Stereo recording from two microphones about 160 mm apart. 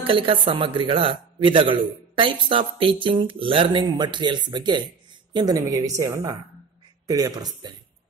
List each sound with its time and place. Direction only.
0.0 s speech: 35° right (ahead or behind)